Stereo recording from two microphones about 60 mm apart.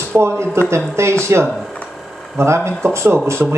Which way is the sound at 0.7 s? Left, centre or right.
Right.